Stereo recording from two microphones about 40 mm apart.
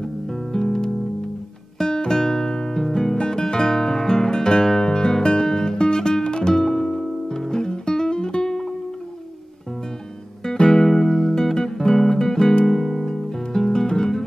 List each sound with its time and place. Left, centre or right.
0.0 s music: centre
1.8 s guitar: centre
5.8 s music: centre
10.4 s music: centre